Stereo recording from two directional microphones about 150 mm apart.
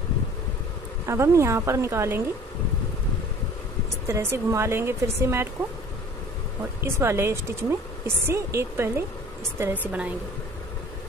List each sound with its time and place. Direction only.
1.0 s a woman's voice: 20° right (ahead or behind)
4.1 s speech: 20° right (ahead or behind)
6.8 s speech: 15° right (ahead or behind)